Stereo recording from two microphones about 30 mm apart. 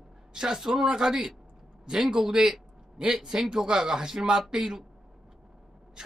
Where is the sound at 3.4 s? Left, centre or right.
Centre.